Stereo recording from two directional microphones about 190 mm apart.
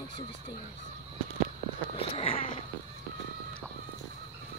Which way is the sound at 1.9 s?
30° left (ahead or behind).